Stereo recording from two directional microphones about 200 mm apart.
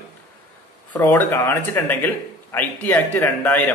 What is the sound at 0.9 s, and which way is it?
A man's voice, 10° left (ahead or behind).